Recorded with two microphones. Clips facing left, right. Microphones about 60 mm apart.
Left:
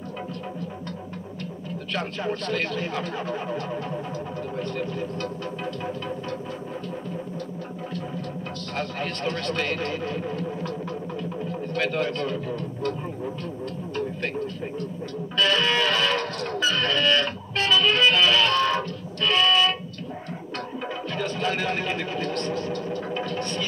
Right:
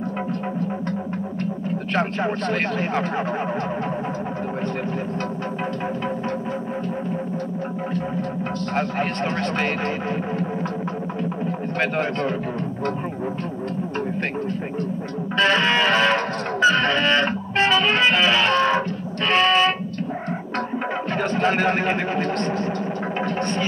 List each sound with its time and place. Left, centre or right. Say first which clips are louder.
2.0 s speech: right 5 dB; right
8.7 s speech: right 6 dB; right
15.3 s music: right 4 dB; right
21.1 s speech: right 6 dB; right